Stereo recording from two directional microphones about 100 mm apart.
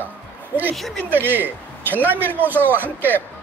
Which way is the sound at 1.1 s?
20° right (ahead or behind).